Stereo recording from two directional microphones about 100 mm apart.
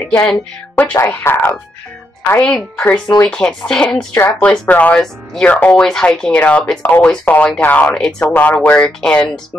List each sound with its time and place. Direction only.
0.7 s speech: 20° left (ahead or behind)
2.3 s speech: 15° left (ahead or behind)
4.1 s speech: 20° left (ahead or behind)
5.0 s speech: 5° left (ahead or behind)